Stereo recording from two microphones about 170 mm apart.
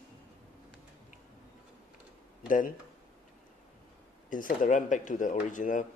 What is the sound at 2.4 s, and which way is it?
Speech, 55° left (ahead or behind).